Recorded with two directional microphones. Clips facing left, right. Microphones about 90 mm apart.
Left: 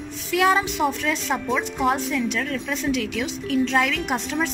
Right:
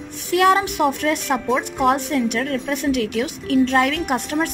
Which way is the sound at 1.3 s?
15° right (ahead or behind).